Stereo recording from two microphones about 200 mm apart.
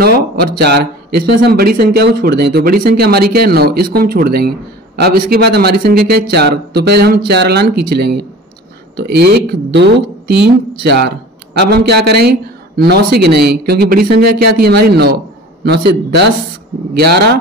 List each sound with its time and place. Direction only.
0.0 s speech: 50° right (ahead or behind)